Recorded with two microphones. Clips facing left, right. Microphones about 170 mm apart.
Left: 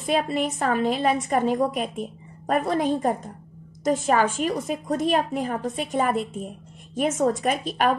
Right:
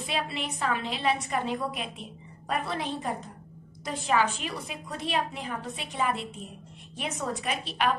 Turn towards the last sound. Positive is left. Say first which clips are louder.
# left 6 dB
turn(degrees=45)  # may be behind; listen again after turning